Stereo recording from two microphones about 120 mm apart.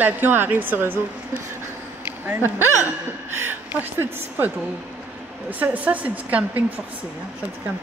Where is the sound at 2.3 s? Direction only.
15° right (ahead or behind).